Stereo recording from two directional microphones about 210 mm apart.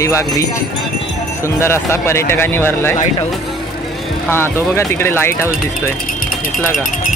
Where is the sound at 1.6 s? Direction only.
10° left (ahead or behind).